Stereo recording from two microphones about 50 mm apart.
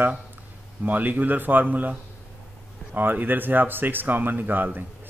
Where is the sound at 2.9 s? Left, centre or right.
Right.